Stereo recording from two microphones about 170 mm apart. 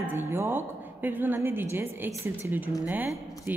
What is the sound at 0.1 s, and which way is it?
A woman's voice, 15° right (ahead or behind).